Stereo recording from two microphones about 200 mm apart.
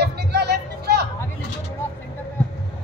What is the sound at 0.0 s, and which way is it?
Music, 55° right (ahead or behind).